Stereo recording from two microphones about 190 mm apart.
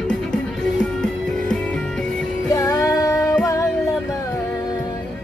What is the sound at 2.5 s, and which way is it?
Music, 20° left (ahead or behind).